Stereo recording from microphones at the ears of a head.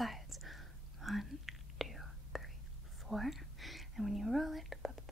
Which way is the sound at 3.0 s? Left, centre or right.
Centre.